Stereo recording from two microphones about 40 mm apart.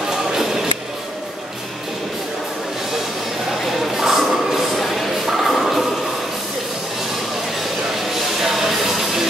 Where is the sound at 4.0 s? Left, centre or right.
Centre.